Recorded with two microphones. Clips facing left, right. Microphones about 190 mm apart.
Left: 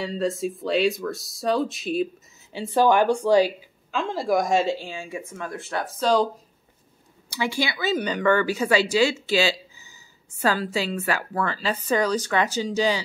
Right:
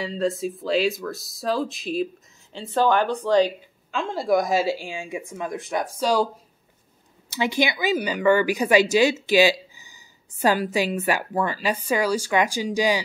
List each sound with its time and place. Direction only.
0.0 s speech: centre (ahead or behind)
7.2 s a woman's voice: 20° right (ahead or behind)